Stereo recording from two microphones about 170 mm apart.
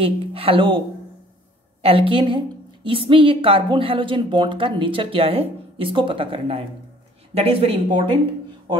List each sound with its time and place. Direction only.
0.0 s a woman's voice: 35° right (ahead or behind)